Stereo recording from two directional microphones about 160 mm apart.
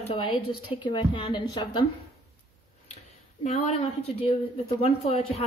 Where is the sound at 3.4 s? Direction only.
40° left (ahead or behind).